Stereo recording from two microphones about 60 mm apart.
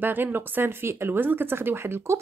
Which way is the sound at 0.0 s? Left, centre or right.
Right.